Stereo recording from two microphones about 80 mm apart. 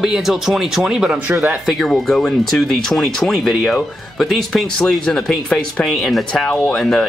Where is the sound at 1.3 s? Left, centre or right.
Right.